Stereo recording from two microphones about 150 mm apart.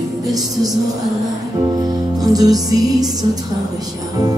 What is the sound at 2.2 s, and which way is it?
Music, 25° right (ahead or behind).